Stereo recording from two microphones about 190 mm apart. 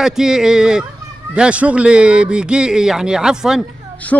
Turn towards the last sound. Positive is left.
turn(degrees=5)  # may be behind; listen again after turning